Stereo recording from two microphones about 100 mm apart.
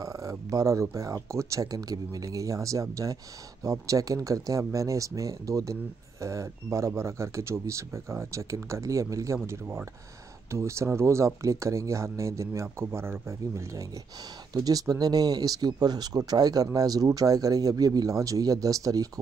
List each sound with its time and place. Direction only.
0.0 s speech: 35° right (ahead or behind)